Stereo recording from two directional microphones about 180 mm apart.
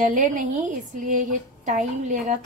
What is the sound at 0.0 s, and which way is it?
A woman's voice, 45° right (ahead or behind).